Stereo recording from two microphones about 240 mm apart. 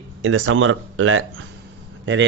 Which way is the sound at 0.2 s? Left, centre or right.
Right.